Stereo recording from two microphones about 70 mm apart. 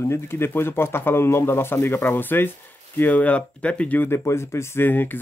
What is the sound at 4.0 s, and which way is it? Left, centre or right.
Speech, left.